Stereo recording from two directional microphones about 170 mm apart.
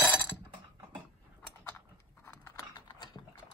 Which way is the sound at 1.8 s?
15° left (ahead or behind).